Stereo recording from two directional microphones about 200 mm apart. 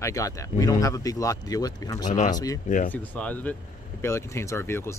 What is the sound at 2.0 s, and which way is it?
Speech, 40° left (ahead or behind).